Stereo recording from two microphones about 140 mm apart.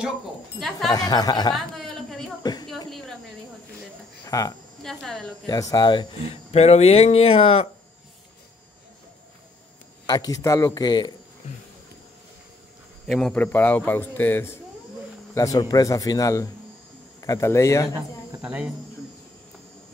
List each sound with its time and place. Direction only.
0.6 s a woman's voice: centre (ahead or behind)
0.9 s a man's voice: 25° left (ahead or behind)
1.5 s a sound: centre (ahead or behind)
4.3 s speech: 25° left (ahead or behind)
4.8 s a woman's voice: 5° left (ahead or behind)
5.5 s a man's voice: 25° left (ahead or behind)
6.2 s speech: 50° left (ahead or behind)
10.0 s a man's voice: 30° left (ahead or behind)
13.0 s a man's voice: 5° left (ahead or behind); by 17.8 s 20° left (ahead or behind)
18.4 s speech: 10° right (ahead or behind)